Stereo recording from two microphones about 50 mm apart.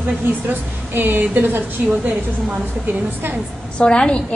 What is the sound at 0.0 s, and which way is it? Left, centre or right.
A woman's voice, right.